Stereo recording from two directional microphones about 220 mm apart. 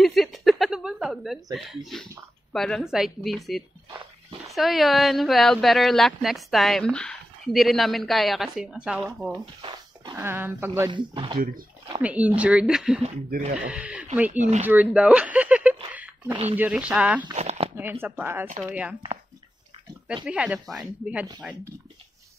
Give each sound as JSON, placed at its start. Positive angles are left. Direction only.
{"t": 0.0, "sound": "a sound", "side_deg": 0}
{"t": 2.5, "sound": "speech", "side_deg": 0}
{"t": 9.6, "sound": "speech", "side_deg": -20}
{"t": 10.9, "sound": "speech", "side_deg": -20}
{"t": 11.3, "sound": "speech", "side_deg": -40}
{"t": 12.0, "sound": "speech", "side_deg": -5}
{"t": 17.3, "sound": "speech", "side_deg": -30}
{"t": 18.0, "sound": "speech", "side_deg": -10}
{"t": 20.2, "sound": "speech", "side_deg": -5}